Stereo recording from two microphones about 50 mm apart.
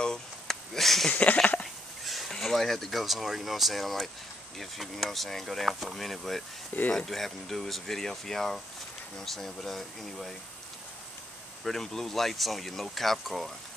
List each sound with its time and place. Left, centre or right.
0.0 s a sound: centre
1.0 s speech: left
2.0 s a sound: centre
2.3 s speech: centre
6.7 s speech: left
7.1 s speech: centre
11.6 s speech: centre